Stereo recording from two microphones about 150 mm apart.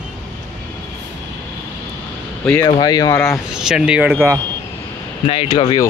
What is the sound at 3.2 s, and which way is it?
Speech, centre (ahead or behind).